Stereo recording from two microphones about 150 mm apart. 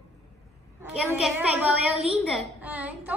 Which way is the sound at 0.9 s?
5° right (ahead or behind).